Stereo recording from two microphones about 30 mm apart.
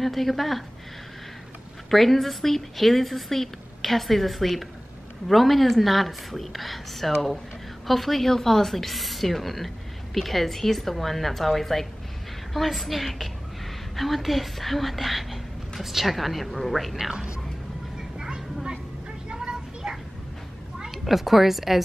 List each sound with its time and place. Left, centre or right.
0.0 s a woman's voice: centre
1.9 s a woman's voice: centre
18.2 s a sound: right
21.0 s a woman's voice: centre